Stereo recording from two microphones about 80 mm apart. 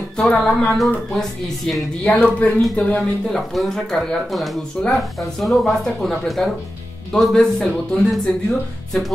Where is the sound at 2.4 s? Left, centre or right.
Centre.